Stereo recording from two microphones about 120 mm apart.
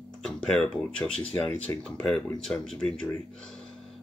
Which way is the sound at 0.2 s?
5° left (ahead or behind).